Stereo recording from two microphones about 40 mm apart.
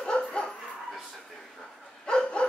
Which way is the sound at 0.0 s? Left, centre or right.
Left.